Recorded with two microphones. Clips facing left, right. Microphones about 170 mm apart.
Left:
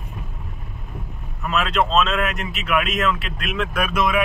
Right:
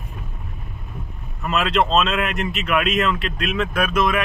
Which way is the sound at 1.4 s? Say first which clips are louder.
Right 1 dB; centre (ahead or behind).